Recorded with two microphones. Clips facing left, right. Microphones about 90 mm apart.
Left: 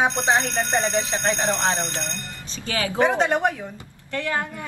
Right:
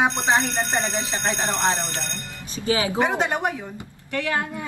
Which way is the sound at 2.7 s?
20° right (ahead or behind).